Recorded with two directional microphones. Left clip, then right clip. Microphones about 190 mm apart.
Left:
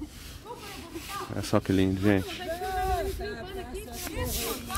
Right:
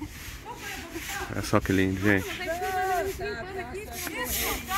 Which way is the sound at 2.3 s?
20° left (ahead or behind).